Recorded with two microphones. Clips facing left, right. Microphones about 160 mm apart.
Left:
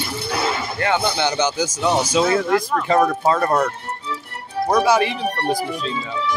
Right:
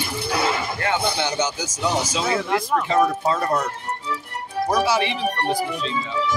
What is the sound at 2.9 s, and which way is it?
Speech, 55° left (ahead or behind).